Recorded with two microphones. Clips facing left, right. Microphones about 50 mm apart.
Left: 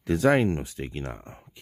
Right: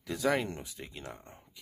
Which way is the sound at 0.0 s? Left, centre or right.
Left.